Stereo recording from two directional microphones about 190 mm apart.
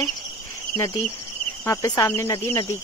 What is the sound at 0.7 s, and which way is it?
Speech, 15° left (ahead or behind).